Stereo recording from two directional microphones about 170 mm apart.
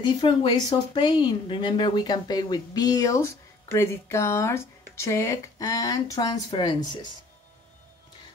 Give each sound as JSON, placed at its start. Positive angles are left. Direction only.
{"t": 0.0, "sound": "speech", "side_deg": 30}